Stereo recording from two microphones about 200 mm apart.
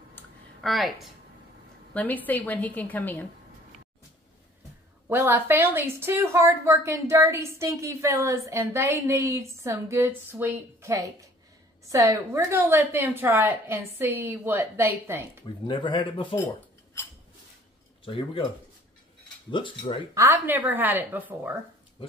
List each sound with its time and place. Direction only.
0.1 s clicking: centre (ahead or behind)
2.0 s a woman's voice: 10° left (ahead or behind)
5.1 s a woman's voice: 10° right (ahead or behind)
15.4 s speech: 25° left (ahead or behind)
18.0 s speech: 25° left (ahead or behind)
19.5 s speech: 25° left (ahead or behind)
20.2 s a woman's voice: 10° right (ahead or behind)